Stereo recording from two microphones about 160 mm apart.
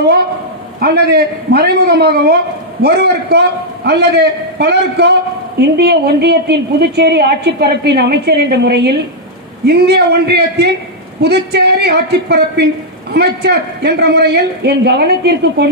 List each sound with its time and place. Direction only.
0.7 s a man's voice: 80° right